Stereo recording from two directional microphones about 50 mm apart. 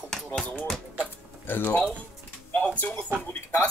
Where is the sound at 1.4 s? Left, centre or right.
Left.